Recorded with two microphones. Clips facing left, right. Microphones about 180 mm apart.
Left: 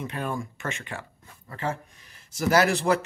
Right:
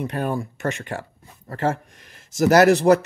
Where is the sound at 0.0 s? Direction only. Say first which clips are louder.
Right 6 dB; 40° right (ahead or behind).